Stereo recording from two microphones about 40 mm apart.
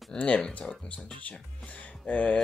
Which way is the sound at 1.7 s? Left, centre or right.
Left.